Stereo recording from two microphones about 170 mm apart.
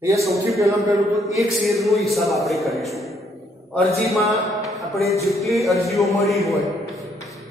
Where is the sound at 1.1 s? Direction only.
Centre (ahead or behind).